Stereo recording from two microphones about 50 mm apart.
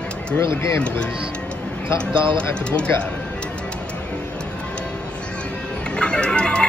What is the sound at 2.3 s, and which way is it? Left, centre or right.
Speech, left.